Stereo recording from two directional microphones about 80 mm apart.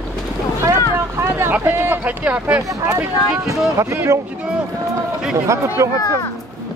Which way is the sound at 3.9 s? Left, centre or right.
Right.